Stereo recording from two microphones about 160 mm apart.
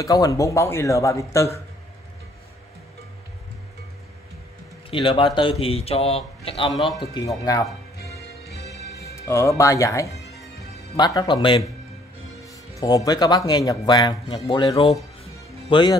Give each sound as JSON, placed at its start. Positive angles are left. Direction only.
{"t": 0.0, "sound": "speech", "side_deg": 20}
{"t": 4.9, "sound": "a man's voice", "side_deg": 30}
{"t": 7.2, "sound": "speech", "side_deg": 20}
{"t": 8.0, "sound": "music", "side_deg": 85}
{"t": 9.1, "sound": "speech", "side_deg": 15}
{"t": 12.8, "sound": "speech", "side_deg": 25}